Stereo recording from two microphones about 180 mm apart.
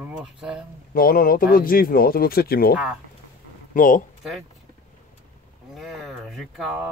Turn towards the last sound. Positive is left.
turn(degrees=0)  # may be behind; listen again after turning